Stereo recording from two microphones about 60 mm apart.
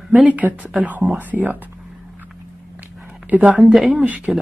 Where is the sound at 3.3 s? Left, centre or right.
Right.